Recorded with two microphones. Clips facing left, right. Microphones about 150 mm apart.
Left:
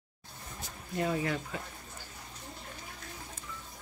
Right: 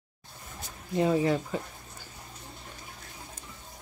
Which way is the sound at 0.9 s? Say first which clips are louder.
Right 7 dB; 25° right (ahead or behind).